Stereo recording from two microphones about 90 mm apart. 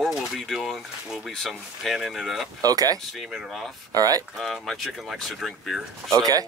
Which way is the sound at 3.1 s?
5° right (ahead or behind).